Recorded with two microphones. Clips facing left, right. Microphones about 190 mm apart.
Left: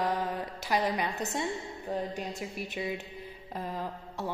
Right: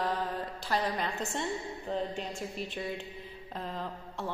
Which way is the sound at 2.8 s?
5° left (ahead or behind).